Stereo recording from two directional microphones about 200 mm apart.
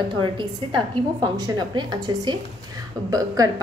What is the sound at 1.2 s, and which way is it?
A woman's voice, 20° right (ahead or behind).